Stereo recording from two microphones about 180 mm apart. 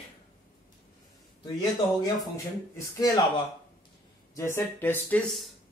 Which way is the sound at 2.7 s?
20° left (ahead or behind).